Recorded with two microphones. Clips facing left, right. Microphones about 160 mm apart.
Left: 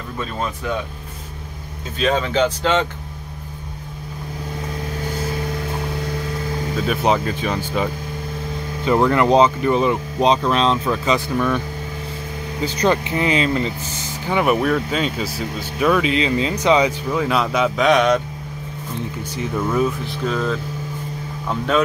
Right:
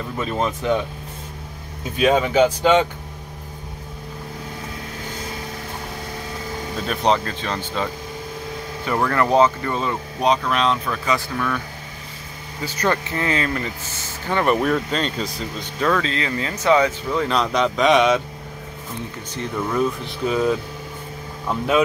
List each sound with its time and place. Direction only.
2.0 s speech: 10° right (ahead or behind)
6.9 s speech: 5° left (ahead or behind)
12.6 s speech: 20° left (ahead or behind)
14.2 s speech: 10° left (ahead or behind)
19.3 s speech: 5° left (ahead or behind)
20.2 s speech: 10° right (ahead or behind)